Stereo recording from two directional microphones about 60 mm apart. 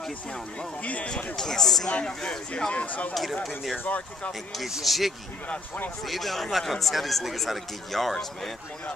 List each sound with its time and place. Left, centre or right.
0.6 s speech: left
1.1 s speech: centre
2.7 s speech: left
4.6 s speech: centre